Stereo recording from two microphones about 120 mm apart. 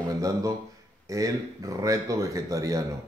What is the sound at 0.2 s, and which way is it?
Speech, 30° right (ahead or behind).